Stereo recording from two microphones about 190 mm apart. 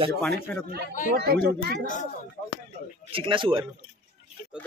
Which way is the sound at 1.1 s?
55° right (ahead or behind).